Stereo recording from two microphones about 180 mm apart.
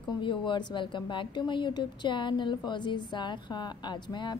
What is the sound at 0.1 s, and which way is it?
A woman's voice, 25° left (ahead or behind).